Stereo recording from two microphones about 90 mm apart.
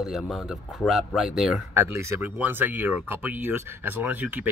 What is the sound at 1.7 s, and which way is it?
Speech, 30° right (ahead or behind).